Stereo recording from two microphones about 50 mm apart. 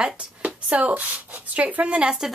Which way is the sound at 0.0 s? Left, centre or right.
Right.